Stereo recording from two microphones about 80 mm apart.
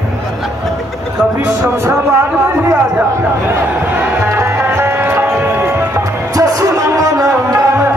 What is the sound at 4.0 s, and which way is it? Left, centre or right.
Music, right.